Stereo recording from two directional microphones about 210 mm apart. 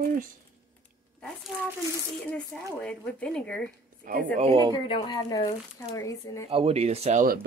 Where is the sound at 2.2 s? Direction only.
5° left (ahead or behind).